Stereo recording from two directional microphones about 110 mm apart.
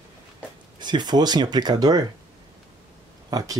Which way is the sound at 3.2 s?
35° right (ahead or behind).